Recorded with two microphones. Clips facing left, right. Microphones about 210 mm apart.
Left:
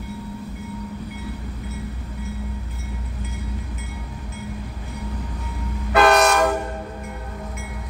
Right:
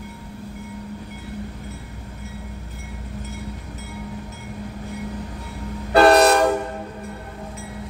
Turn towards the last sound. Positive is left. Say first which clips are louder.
# right 3 dB
turn(degrees=-35)  # may be behind; listen again after turning